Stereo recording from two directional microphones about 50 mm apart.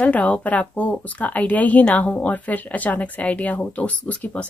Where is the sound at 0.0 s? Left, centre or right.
Left.